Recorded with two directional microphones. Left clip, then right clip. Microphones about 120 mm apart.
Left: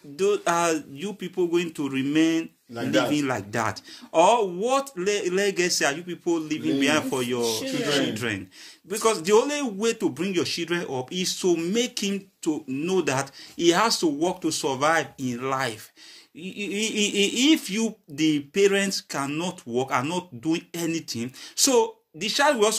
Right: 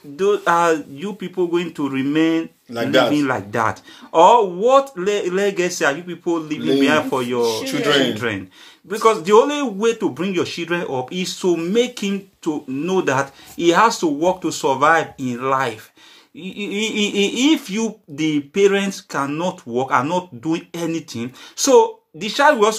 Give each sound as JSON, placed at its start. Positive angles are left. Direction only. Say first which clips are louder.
{"t": 0.1, "sound": "a man's voice", "louder": "right 6 dB", "side_deg": 30}
{"t": 2.7, "sound": "speech", "louder": "right 8 dB", "side_deg": -65}
{"t": 3.1, "sound": "a man's voice", "louder": "right 7 dB", "side_deg": 30}